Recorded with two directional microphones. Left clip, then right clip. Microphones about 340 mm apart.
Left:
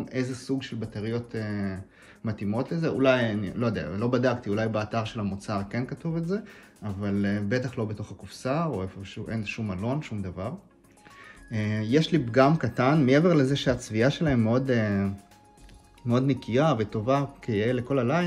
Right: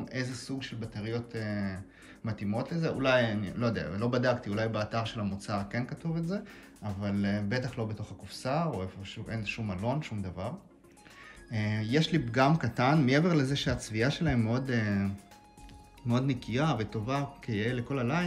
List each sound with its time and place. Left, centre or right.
0.1 s speech: centre
11.5 s speech: centre